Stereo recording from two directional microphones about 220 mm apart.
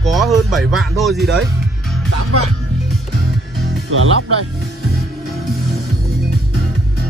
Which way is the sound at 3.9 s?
80° right.